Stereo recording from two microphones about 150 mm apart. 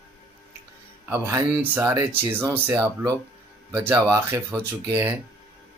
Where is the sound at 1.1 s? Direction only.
15° right (ahead or behind).